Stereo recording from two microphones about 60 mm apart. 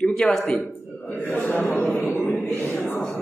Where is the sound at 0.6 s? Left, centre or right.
Left.